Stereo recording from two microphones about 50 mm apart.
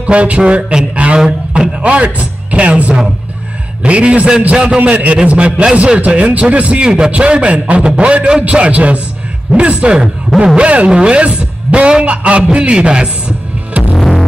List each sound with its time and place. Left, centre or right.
0.0 s a man's voice: right
13.9 s music: centre